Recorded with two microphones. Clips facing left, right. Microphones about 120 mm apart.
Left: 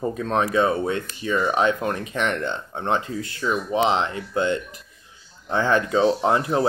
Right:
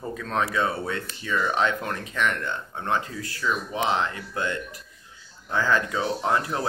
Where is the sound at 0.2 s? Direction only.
20° left (ahead or behind).